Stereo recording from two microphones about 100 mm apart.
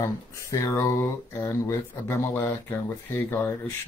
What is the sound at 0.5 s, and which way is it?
Speech, 25° left (ahead or behind).